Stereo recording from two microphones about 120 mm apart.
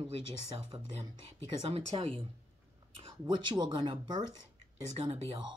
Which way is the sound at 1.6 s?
50° right (ahead or behind).